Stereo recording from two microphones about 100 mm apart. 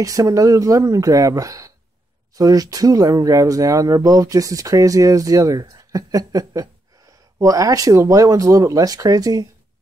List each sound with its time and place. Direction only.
0.0 s speech: 35° right (ahead or behind)